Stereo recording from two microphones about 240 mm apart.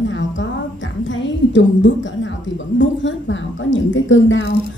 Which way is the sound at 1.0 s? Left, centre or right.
Left.